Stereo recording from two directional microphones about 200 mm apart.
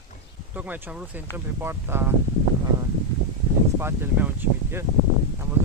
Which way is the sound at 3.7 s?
10° right (ahead or behind).